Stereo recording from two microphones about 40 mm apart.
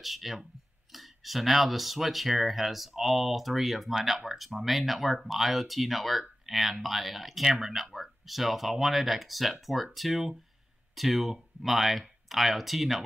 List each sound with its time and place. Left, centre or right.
0.0 s speech: centre